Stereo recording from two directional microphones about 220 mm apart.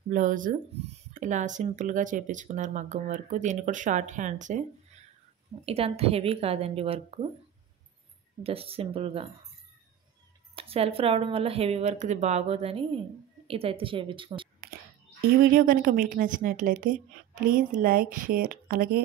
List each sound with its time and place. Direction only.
0.1 s speech: 35° right (ahead or behind)
8.4 s speech: 25° right (ahead or behind)
10.5 s speech: 25° right (ahead or behind)
15.5 s speech: 40° right (ahead or behind)